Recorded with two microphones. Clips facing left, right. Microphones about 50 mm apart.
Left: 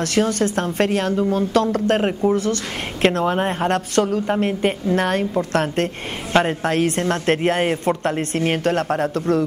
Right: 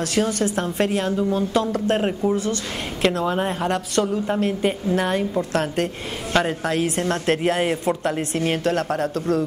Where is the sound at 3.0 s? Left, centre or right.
Left.